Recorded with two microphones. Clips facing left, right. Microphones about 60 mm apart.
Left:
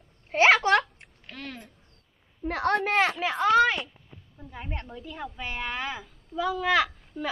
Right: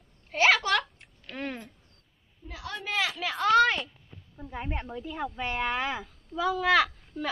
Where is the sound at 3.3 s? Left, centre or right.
Centre.